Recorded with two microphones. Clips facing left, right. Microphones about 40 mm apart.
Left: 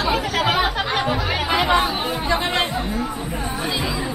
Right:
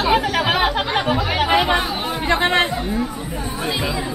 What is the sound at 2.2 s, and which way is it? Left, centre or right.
Speech, right.